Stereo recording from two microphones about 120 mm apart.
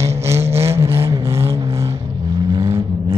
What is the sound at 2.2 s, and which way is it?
Vehicle, 35° right (ahead or behind).